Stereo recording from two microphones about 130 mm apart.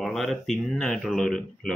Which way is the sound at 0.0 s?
Centre (ahead or behind).